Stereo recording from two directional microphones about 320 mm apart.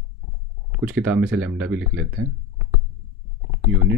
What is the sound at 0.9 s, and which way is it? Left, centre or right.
Speech, centre.